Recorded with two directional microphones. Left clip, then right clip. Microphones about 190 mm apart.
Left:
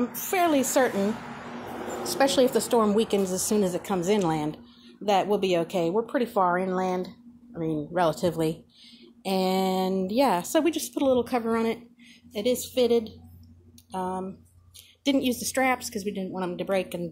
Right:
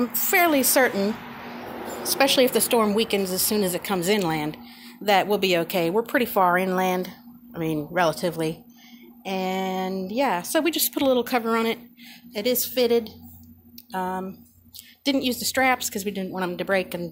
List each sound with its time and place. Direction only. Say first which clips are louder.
0.3 s a woman's voice: right 4 dB; 5° right (ahead or behind)
9.2 s a woman's voice: left 1 dB; 20° left (ahead or behind)
10.6 s a woman's voice: right 2 dB; centre (ahead or behind)